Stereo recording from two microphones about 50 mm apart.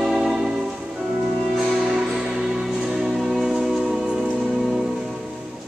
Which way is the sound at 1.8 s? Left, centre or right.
Centre.